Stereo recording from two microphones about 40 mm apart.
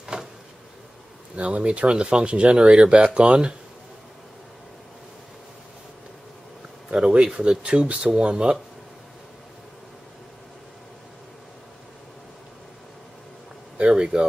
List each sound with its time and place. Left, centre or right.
0.0 s a sound: centre
1.3 s speech: right
6.9 s speech: right
13.8 s speech: right